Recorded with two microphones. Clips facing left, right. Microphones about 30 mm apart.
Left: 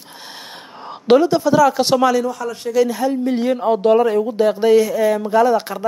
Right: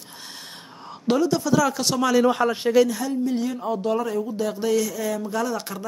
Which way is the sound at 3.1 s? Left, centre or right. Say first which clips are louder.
Left 6 dB; left.